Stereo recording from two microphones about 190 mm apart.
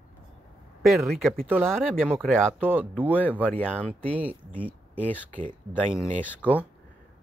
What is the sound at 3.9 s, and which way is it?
Speech, 30° right (ahead or behind).